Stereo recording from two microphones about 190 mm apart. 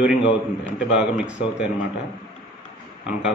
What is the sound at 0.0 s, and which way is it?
A man's voice, 5° right (ahead or behind).